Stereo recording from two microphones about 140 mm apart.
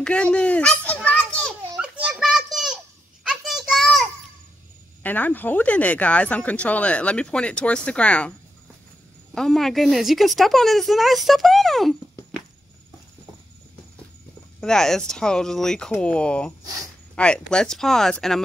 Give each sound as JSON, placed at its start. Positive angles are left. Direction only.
{"t": 0.0, "sound": "children playing", "side_deg": 5}
{"t": 1.8, "sound": "children playing", "side_deg": -10}
{"t": 3.3, "sound": "a sound", "side_deg": -5}
{"t": 5.0, "sound": "speech", "side_deg": 10}
{"t": 9.3, "sound": "a woman's voice", "side_deg": 5}
{"t": 14.6, "sound": "a woman's voice", "side_deg": 5}